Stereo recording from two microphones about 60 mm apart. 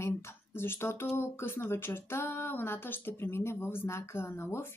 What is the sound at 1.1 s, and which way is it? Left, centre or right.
Speech, left.